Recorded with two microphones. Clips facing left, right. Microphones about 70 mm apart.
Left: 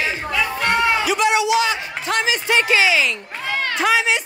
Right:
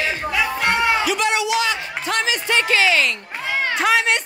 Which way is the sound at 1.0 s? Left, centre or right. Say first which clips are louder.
Left 3 dB; centre.